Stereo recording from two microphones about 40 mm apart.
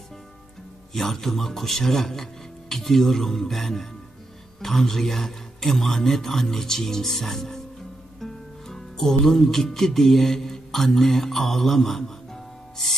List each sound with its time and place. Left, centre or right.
0.9 s a man's voice: centre
8.2 s music: centre